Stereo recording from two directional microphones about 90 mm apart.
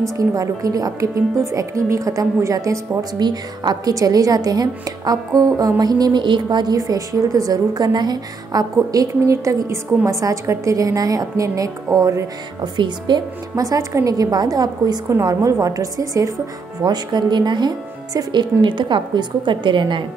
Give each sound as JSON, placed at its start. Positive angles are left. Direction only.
{"t": 0.0, "sound": "a woman's voice", "side_deg": -40}
{"t": 3.2, "sound": "speech", "side_deg": -55}
{"t": 3.9, "sound": "a woman's voice", "side_deg": -40}
{"t": 12.7, "sound": "speech", "side_deg": -60}
{"t": 13.6, "sound": "a woman's voice", "side_deg": -40}
{"t": 16.8, "sound": "speech", "side_deg": -55}